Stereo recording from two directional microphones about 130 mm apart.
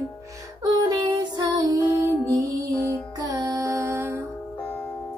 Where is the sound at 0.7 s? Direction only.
35° right (ahead or behind).